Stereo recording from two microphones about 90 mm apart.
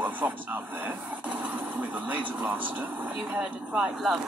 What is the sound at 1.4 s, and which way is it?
Speech, 20° right (ahead or behind).